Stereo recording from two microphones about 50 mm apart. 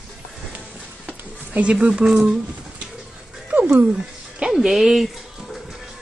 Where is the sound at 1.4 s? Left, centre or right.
Right.